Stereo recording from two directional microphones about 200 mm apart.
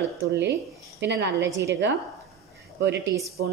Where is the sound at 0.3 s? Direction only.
60° right (ahead or behind).